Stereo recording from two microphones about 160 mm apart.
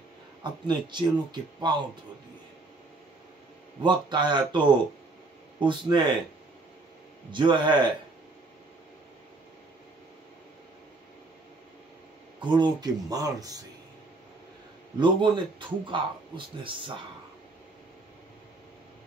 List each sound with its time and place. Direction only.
0.4 s speech: 30° right (ahead or behind)
3.8 s speech: 30° right (ahead or behind)
7.2 s speech: 30° right (ahead or behind)
12.4 s speech: 30° right (ahead or behind)
15.0 s speech: 30° right (ahead or behind)